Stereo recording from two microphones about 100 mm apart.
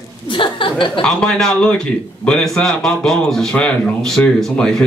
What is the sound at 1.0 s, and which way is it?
A man's voice, 10° left (ahead or behind).